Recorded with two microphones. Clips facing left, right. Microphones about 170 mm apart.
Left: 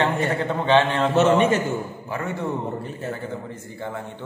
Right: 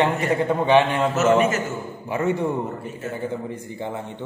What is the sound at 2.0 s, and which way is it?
A man's voice, 20° right (ahead or behind).